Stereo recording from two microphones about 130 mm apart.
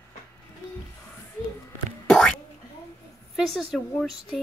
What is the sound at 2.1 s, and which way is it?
Boing, 5° left (ahead or behind).